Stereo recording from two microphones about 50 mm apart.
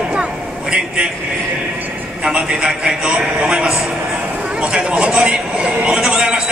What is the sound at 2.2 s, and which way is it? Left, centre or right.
A man's voice, centre.